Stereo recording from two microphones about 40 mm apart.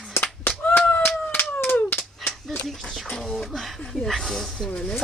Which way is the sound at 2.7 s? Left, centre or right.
Centre.